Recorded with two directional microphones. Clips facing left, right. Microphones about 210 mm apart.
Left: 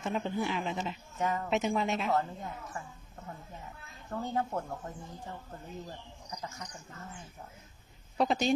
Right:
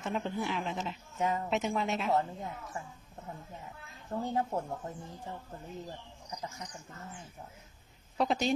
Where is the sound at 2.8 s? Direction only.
20° right (ahead or behind).